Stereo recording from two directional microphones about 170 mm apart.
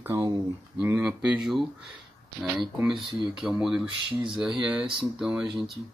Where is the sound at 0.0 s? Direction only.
20° right (ahead or behind); by 1.9 s centre (ahead or behind).